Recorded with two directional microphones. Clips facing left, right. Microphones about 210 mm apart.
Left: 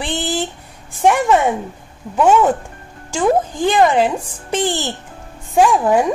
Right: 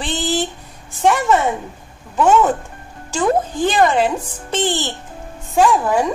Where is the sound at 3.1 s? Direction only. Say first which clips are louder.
Left 2 dB; 15° left (ahead or behind).